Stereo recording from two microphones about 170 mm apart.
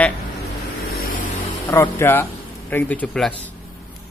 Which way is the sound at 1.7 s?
15° left (ahead or behind).